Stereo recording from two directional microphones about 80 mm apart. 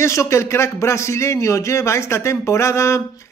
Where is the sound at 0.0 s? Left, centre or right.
Left.